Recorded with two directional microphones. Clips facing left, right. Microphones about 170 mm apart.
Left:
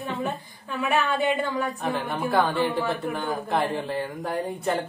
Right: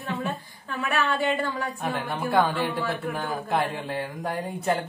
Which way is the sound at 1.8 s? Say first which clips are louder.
Left 2 dB; centre (ahead or behind).